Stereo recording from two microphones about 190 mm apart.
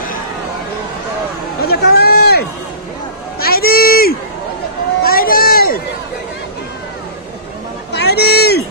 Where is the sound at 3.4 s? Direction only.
50° left (ahead or behind).